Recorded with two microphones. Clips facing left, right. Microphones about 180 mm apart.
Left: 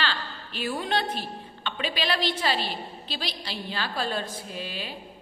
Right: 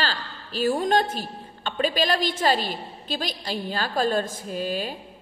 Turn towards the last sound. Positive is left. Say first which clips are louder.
# right 8 dB
turn(degrees=-45)  # may be behind; listen again after turning